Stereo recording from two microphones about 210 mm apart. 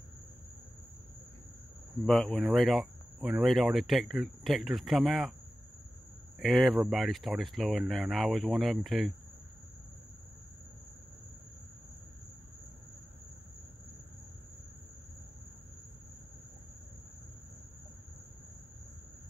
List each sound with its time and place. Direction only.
2.0 s speech: centre (ahead or behind)
6.4 s speech: centre (ahead or behind)